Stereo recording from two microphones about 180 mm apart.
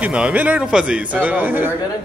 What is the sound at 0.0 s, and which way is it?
A man's voice, 5° right (ahead or behind).